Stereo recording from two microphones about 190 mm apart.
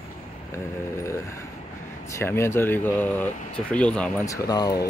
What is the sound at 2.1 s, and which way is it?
Speech, 15° left (ahead or behind).